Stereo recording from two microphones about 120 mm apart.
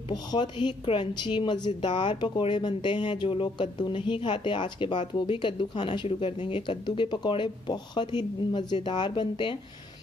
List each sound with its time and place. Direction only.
0.1 s a woman's voice: 35° left (ahead or behind)